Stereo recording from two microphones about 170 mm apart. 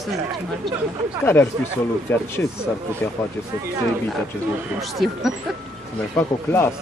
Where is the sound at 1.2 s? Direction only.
15° left (ahead or behind).